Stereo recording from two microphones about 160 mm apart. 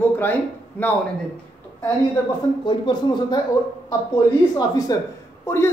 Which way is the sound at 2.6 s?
30° left (ahead or behind).